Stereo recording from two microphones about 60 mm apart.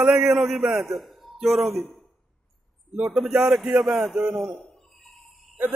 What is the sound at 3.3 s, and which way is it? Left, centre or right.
Speech, centre.